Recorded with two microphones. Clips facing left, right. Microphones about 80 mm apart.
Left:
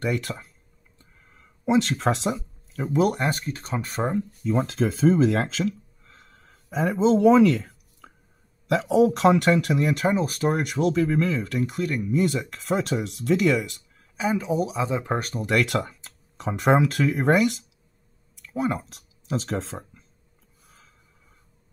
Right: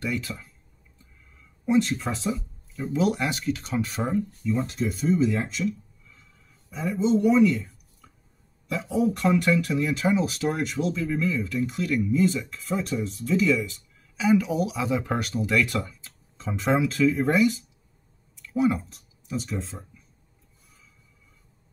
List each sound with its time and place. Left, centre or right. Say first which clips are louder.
0.0 s speech: left 3 dB; left
0.9 s a sound: left 2 dB; left
2.7 s speech: left 2 dB; left
4.8 s speech: left 4 dB; left
5.2 s a sound: left 3 dB; left
8.6 s speech: left 6 dB; left
10.1 s speech: left 2 dB; left
14.1 s speech: right 2 dB; left
15.2 s speech: right 2 dB; left
15.5 s speech: left 3 dB; left
18.5 s speech: right 3 dB; left
18.8 s speech: left 2 dB; left